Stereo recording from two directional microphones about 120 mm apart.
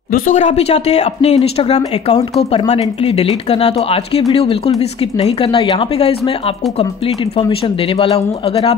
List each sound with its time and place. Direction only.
0.3 s speech: 85° left; by 1.8 s 55° left (ahead or behind)
3.0 s speech: 55° left (ahead or behind)